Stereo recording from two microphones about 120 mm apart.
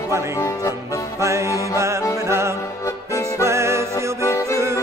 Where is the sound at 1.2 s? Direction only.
25° right (ahead or behind).